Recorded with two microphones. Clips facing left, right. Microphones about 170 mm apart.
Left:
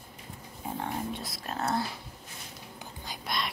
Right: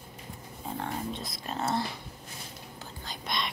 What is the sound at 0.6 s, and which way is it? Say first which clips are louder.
Speech: left 1 dB; 10° left (ahead or behind).